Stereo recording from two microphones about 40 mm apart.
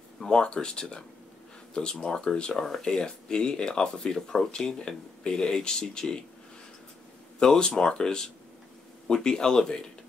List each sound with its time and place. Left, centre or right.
0.2 s speech: left
2.5 s speech: centre
7.3 s speech: centre